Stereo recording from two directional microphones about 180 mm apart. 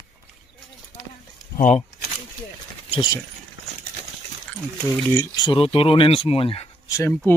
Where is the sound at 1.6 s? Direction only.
45° left (ahead or behind).